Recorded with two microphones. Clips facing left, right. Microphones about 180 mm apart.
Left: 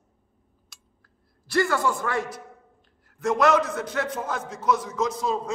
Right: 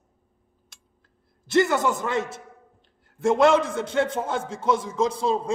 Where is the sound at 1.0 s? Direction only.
20° right (ahead or behind).